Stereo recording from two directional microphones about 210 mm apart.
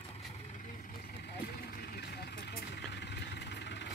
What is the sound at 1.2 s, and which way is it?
Vehicle, 50° left (ahead or behind).